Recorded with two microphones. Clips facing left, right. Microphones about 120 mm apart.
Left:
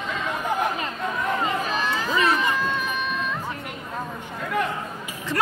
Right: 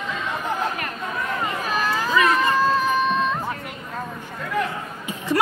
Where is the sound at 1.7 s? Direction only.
45° right (ahead or behind).